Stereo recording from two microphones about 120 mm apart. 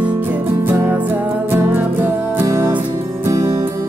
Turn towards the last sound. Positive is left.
turn(degrees=-25)  # may be behind; listen again after turning